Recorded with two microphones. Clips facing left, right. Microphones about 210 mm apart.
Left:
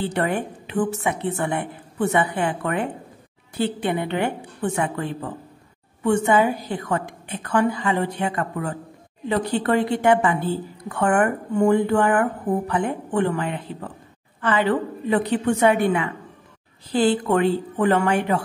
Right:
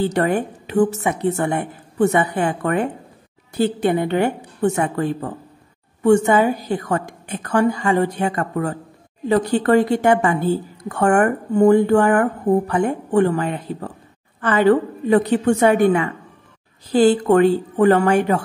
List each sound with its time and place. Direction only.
0.0 s a woman's voice: 40° right (ahead or behind)